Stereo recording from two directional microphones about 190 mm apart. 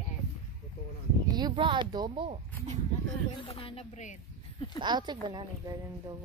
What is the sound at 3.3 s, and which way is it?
Music, 30° left (ahead or behind).